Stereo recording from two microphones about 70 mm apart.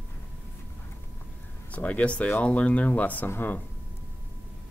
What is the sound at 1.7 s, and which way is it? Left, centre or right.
Speech, left.